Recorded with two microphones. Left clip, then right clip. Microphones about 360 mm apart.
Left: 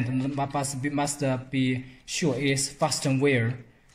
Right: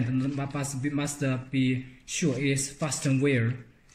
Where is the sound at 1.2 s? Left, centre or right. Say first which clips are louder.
Left 2 dB; centre.